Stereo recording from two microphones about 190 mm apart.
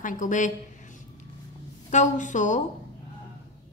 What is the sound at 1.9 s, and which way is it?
Speech, 40° left (ahead or behind).